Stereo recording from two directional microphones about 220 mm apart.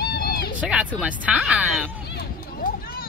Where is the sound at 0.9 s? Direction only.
5° right (ahead or behind).